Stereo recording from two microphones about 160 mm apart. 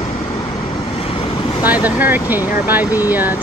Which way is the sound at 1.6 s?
10° right (ahead or behind).